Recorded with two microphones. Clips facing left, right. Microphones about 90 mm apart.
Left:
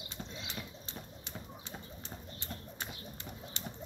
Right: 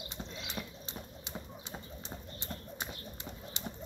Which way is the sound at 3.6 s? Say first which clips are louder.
Right 2 dB; 20° right (ahead or behind).